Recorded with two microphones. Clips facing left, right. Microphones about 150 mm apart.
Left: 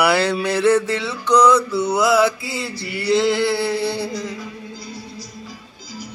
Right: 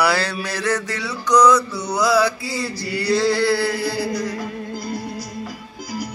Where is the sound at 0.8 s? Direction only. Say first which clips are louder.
Left 3 dB; 25° left (ahead or behind).